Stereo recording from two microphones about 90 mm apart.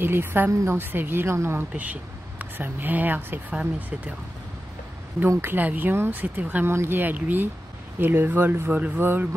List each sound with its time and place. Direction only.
0.0 s speech: 25° right (ahead or behind)
1.7 s speech: 15° right (ahead or behind)
5.4 s speech: 20° right (ahead or behind)